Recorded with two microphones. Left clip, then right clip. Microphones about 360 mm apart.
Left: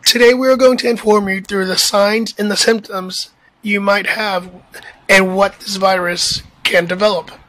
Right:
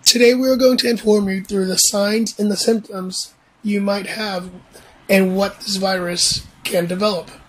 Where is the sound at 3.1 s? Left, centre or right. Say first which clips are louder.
Left 3 dB; centre.